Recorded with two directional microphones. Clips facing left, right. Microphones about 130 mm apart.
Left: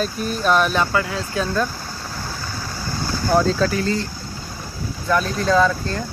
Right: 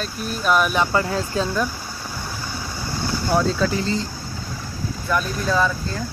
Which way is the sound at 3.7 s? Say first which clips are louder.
Left 2 dB; 20° right (ahead or behind).